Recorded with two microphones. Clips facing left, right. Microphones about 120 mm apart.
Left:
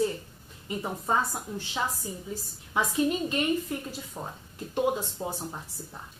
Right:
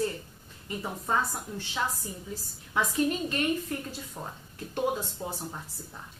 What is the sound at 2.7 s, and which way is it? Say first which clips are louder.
A woman's voice: left 1 dB; 15° left (ahead or behind).